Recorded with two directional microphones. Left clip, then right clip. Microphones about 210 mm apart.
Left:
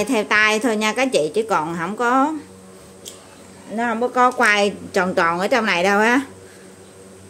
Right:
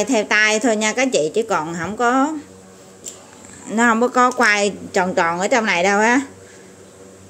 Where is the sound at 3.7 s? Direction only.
30° right (ahead or behind); by 6.3 s 5° right (ahead or behind).